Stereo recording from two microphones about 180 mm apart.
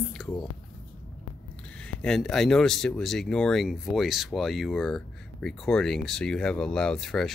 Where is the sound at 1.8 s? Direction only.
5° left (ahead or behind).